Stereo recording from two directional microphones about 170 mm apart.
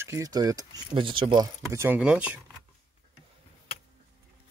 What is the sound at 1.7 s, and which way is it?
Speech, 10° right (ahead or behind).